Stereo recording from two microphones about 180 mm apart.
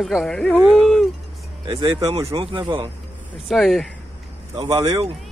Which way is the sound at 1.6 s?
30° right (ahead or behind).